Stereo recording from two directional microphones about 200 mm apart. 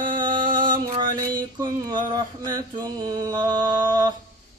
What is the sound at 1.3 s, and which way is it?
Mantra, 20° right (ahead or behind).